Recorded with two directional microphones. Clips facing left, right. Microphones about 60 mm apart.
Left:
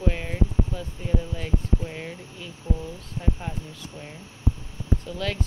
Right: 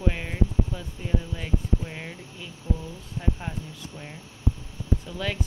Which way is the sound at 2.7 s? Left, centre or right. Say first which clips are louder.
Left 1 dB; left.